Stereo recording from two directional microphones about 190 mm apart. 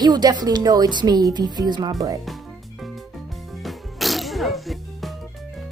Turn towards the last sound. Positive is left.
turn(degrees=0)  # may be behind; listen again after turning